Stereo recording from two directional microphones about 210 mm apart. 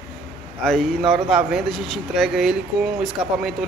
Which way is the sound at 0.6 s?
Centre (ahead or behind).